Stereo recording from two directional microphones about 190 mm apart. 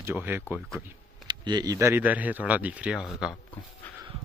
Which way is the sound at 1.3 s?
20° right (ahead or behind).